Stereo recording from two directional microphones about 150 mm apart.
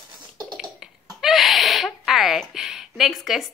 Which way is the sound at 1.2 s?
Centre (ahead or behind).